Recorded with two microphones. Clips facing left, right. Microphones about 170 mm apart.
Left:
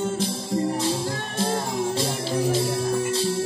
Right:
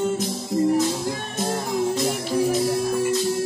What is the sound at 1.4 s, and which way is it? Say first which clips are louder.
Music: right 1 dB; 30° left (ahead or behind).